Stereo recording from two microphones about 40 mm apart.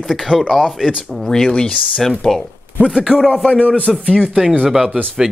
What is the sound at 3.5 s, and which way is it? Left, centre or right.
Speech, left.